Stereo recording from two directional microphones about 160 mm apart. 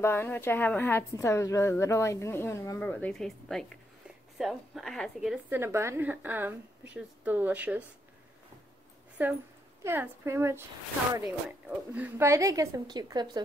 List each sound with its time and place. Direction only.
0.0 s a woman's voice: 15° left (ahead or behind)
5.5 s a woman's voice: 15° right (ahead or behind)
9.2 s a woman's voice: 10° right (ahead or behind)
11.9 s a woman's voice: 15° right (ahead or behind)